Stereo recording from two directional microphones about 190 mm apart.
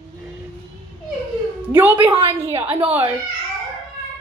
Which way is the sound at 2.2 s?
30° right (ahead or behind).